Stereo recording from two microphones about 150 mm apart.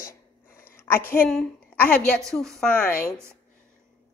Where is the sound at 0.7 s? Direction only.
15° left (ahead or behind).